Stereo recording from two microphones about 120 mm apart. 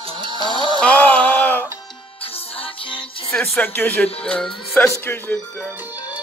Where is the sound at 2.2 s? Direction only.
50° left (ahead or behind).